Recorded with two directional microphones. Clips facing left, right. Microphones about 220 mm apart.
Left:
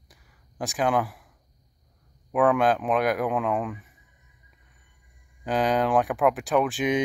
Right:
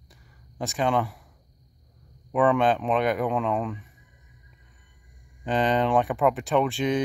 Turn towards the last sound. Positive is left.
turn(degrees=5)  # may be behind; listen again after turning